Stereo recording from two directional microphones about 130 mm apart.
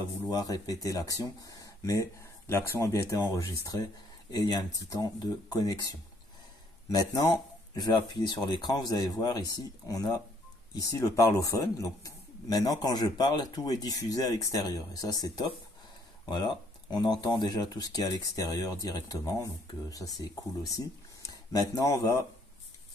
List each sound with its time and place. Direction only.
0.3 s speech: 30° left (ahead or behind)
6.9 s speech: 30° left (ahead or behind)